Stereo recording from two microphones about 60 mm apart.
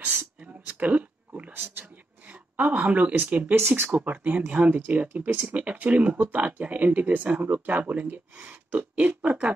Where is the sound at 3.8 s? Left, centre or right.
Right.